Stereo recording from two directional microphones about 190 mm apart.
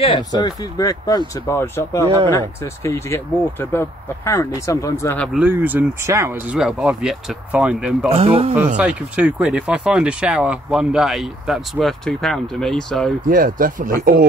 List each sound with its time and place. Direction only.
0.0 s speech: 25° left (ahead or behind)
5.3 s speech: 10° right (ahead or behind)
6.6 s speech: 5° right (ahead or behind)
8.1 s speech: 30° right (ahead or behind)
8.7 s speech: 5° right (ahead or behind)
13.3 s speech: 45° right (ahead or behind)